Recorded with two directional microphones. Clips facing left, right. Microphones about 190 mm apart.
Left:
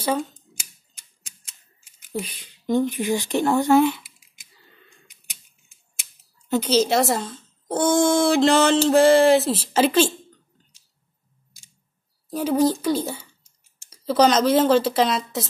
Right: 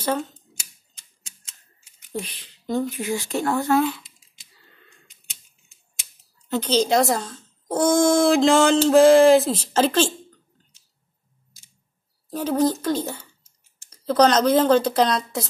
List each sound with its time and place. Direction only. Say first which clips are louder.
0.0 s speech: left 1 dB; 10° left (ahead or behind)
2.1 s speech: left 1 dB; 5° left (ahead or behind)
2.6 s speech: left 3 dB; 20° left (ahead or behind)
6.5 s speech: left 1 dB; 10° left (ahead or behind)
12.3 s speech: left 1 dB; 10° left (ahead or behind)